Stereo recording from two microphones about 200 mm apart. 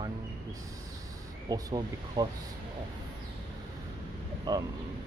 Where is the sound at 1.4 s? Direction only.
20° right (ahead or behind).